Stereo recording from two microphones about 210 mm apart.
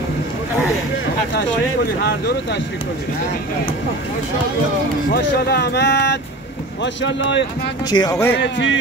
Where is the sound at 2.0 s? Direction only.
50° left (ahead or behind).